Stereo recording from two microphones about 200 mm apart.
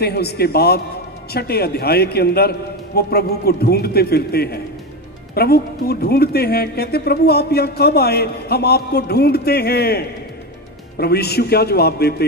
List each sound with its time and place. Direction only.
0.0 s speech: 55° left (ahead or behind)